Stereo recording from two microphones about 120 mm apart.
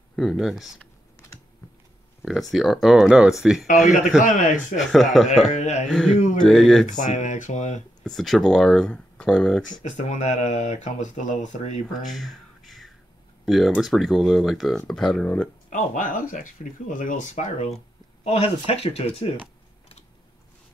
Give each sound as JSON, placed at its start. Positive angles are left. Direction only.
{"t": 0.1, "sound": "speech", "side_deg": 0}
{"t": 2.5, "sound": "speech", "side_deg": 0}
{"t": 4.2, "sound": "speech", "side_deg": 90}
{"t": 4.7, "sound": "speech", "side_deg": 0}
{"t": 5.5, "sound": "speech", "side_deg": 75}
{"t": 5.9, "sound": "speech", "side_deg": 5}
{"t": 6.9, "sound": "speech", "side_deg": 90}
{"t": 8.0, "sound": "speech", "side_deg": 0}
{"t": 9.8, "sound": "speech", "side_deg": 80}
{"t": 12.0, "sound": "a sound", "side_deg": 0}
{"t": 13.5, "sound": "speech", "side_deg": 0}
{"t": 15.7, "sound": "speech", "side_deg": 90}
{"t": 18.2, "sound": "speech", "side_deg": 55}